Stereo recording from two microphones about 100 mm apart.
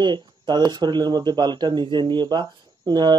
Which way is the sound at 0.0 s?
45° right (ahead or behind).